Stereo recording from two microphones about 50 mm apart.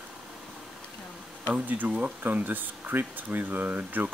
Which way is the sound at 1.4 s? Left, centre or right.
Right.